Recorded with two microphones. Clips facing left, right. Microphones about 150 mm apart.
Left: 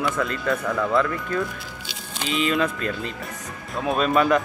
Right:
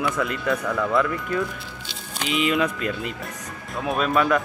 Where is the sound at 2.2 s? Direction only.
15° right (ahead or behind).